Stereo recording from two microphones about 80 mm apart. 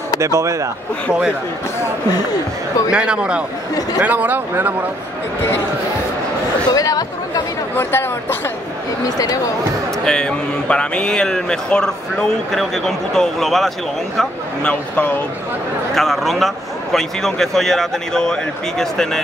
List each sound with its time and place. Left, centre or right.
0.2 s speech: right
2.9 s speech: centre
6.7 s chatter: left
7.7 s speech: left
10.0 s speech: centre
14.1 s speech: centre
15.9 s a man's voice: centre